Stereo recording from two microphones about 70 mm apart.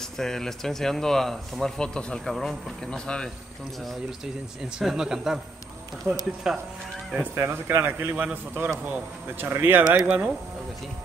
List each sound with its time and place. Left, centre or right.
0.2 s speech: centre
4.7 s speech: centre
6.0 s speech: centre
6.5 s speech: centre
7.3 s speech: right
9.8 s speech: centre